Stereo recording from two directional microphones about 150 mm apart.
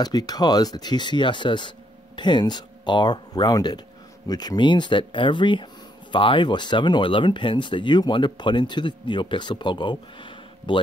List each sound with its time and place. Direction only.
0.0 s speech: 25° left (ahead or behind)